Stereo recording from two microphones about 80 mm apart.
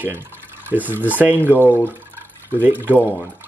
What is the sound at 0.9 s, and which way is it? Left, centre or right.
Speech, right.